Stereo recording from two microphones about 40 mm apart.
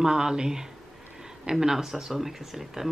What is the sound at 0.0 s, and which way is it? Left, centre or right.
Speech, centre.